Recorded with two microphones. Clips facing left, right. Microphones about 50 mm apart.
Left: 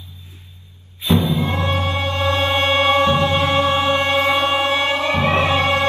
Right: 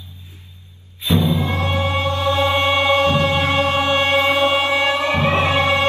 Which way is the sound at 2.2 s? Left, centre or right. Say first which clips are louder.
Even; left.